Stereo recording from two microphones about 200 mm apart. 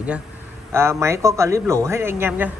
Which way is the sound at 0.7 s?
15° right (ahead or behind).